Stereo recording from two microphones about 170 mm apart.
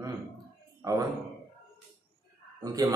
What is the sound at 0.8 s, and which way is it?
Speech, 20° right (ahead or behind).